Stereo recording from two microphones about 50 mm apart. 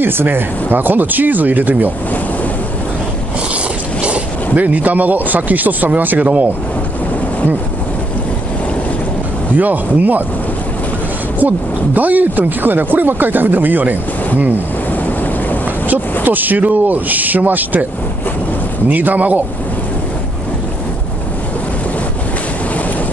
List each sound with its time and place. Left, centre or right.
0.0 s speech: right
4.0 s speech: right
9.6 s speech: right
11.3 s speech: right
15.9 s speech: right
18.9 s speech: right